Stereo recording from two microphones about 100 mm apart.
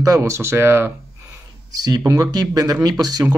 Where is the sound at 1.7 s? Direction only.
40° right (ahead or behind).